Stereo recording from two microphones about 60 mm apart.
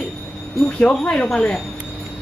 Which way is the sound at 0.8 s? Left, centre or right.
Centre.